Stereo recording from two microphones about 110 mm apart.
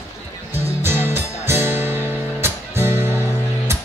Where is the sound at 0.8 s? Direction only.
20° right (ahead or behind).